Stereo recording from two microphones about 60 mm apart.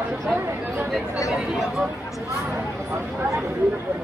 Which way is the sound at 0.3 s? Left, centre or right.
Centre.